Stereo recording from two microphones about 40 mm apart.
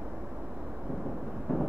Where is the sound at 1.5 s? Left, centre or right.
Left.